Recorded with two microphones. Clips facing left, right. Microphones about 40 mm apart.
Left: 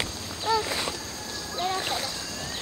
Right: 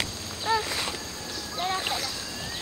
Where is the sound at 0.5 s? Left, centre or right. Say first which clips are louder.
Left 1 dB; right.